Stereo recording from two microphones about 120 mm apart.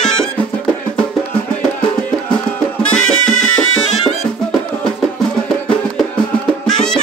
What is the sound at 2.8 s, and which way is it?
Music, 5° left (ahead or behind).